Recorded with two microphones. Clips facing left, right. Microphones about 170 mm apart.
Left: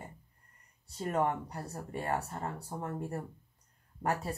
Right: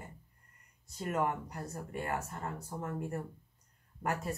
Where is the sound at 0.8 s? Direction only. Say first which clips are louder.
Left 2 dB; 30° left (ahead or behind).